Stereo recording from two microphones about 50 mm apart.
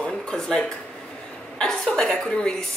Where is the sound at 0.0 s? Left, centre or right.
Centre.